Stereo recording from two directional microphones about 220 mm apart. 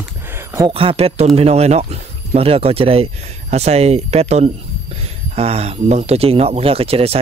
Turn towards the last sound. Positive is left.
turn(degrees=-25)  # may be behind; listen again after turning